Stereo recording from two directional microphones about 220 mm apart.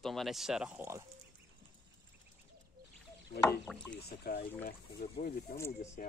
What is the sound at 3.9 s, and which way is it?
Speech, 45° left (ahead or behind).